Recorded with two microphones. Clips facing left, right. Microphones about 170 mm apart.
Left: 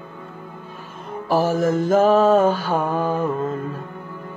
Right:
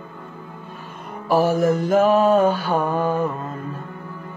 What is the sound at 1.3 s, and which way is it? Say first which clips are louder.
Mantra: right 1 dB; 45° left (ahead or behind).